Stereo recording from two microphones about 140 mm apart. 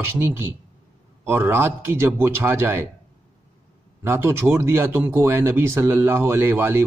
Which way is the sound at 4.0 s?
15° right (ahead or behind).